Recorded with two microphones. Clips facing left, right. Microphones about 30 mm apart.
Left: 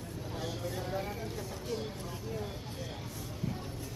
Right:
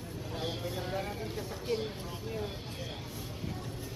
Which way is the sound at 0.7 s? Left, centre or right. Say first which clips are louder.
Left 1 dB; right.